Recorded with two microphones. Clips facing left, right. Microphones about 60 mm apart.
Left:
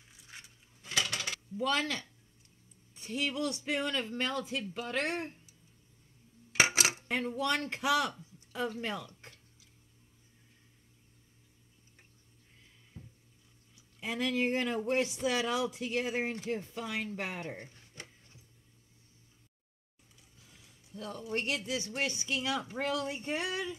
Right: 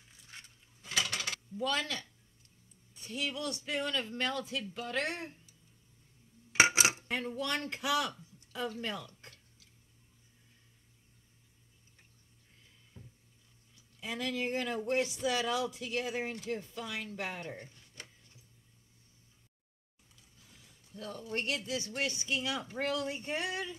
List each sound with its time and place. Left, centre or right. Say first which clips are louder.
0.8 s a sound: left 1 dB; centre
1.6 s speech: left 3 dB; left
6.6 s cutlery: right 2 dB; right
7.0 s speech: left 3 dB; left
13.9 s speech: left 4 dB; left
20.9 s speech: left 2 dB; left